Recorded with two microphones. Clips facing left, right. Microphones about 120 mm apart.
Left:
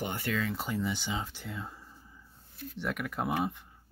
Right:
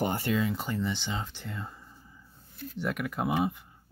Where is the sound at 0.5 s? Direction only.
5° left (ahead or behind).